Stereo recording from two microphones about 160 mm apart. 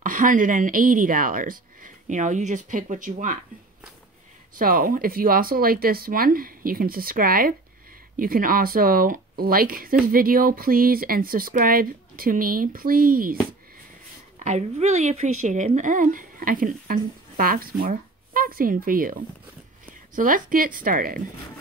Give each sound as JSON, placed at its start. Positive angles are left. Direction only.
{"t": 0.0, "sound": "speech", "side_deg": -55}
{"t": 4.6, "sound": "speech", "side_deg": -60}
{"t": 14.4, "sound": "speech", "side_deg": -45}
{"t": 20.2, "sound": "speech", "side_deg": -60}